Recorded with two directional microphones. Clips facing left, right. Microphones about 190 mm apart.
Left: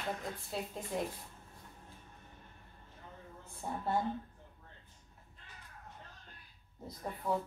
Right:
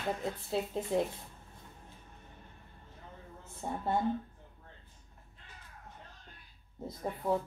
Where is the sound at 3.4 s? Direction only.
20° right (ahead or behind).